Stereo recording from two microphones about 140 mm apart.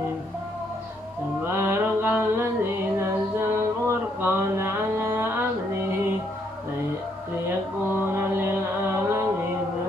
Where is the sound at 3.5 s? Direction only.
20° right (ahead or behind).